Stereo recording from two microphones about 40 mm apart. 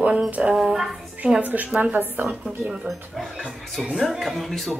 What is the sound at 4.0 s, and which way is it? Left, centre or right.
Speech, centre.